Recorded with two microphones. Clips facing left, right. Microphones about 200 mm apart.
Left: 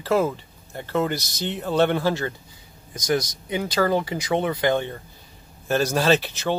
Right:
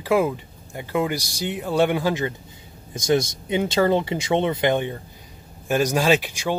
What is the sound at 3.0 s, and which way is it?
Speech, 25° right (ahead or behind).